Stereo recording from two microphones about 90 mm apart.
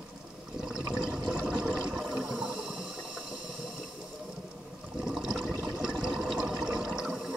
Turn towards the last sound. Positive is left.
turn(degrees=0)  # may be behind; listen again after turning